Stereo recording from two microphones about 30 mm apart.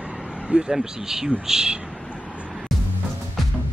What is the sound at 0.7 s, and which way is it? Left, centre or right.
Speech, centre.